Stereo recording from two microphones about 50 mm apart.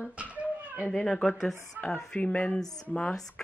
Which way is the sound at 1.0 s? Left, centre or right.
Centre.